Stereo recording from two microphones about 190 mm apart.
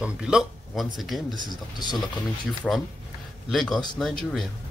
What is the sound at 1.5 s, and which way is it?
Speech, 20° left (ahead or behind).